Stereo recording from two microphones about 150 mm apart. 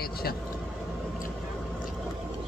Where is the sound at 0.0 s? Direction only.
90° left.